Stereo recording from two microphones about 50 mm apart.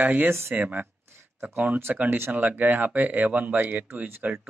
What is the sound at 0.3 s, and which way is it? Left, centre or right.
Speech, right.